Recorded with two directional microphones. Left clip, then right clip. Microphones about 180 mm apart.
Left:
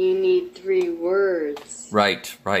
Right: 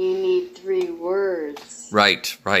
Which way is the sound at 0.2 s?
20° right (ahead or behind).